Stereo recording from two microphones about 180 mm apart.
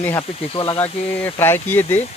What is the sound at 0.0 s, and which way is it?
Speech, 20° left (ahead or behind).